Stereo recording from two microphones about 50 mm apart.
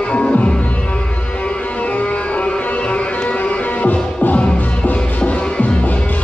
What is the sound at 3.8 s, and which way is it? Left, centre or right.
Music, left.